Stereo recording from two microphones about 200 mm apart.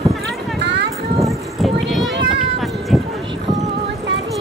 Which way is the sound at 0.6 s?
60° right (ahead or behind).